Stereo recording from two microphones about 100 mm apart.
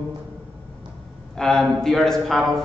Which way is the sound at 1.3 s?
5° left (ahead or behind).